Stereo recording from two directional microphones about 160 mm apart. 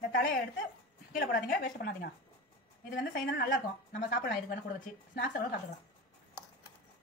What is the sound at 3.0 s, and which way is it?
A woman's voice, 60° left (ahead or behind).